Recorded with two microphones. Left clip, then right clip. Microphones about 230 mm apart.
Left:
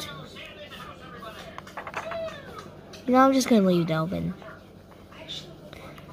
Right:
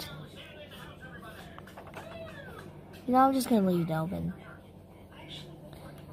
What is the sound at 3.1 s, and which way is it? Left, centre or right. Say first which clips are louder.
Speech: left 5 dB; centre.